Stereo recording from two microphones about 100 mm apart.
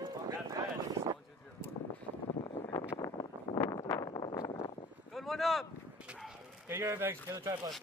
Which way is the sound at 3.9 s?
45° left (ahead or behind).